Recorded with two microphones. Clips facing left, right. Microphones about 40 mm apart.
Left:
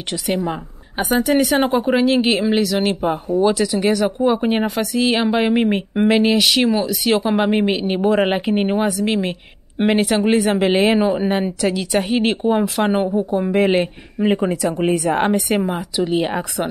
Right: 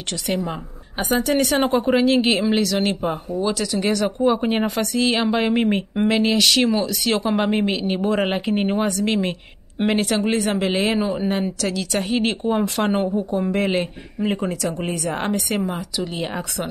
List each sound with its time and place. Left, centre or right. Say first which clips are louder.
0.1 s a woman's voice: left 3 dB; centre